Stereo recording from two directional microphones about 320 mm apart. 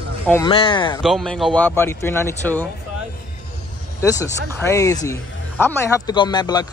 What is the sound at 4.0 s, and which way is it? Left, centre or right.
A man's voice, centre.